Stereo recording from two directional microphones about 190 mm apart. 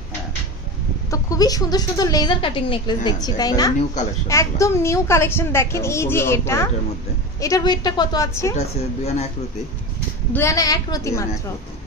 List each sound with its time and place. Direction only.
1.1 s a woman's voice: 20° left (ahead or behind)
10.3 s a woman's voice: 15° left (ahead or behind)